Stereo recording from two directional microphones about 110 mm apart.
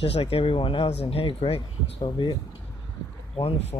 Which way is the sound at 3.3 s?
70° left (ahead or behind).